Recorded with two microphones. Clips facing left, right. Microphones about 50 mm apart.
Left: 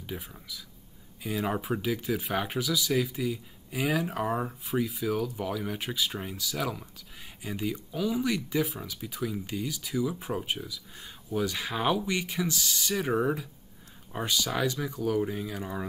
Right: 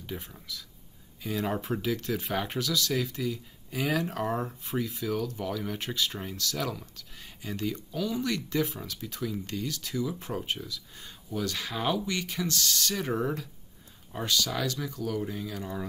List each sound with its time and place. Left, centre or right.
0.0 s speech: centre